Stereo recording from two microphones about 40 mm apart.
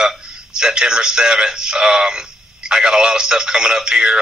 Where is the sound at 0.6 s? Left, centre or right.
Centre.